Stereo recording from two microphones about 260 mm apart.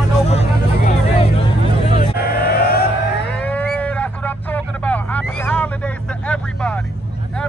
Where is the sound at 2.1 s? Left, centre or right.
Left.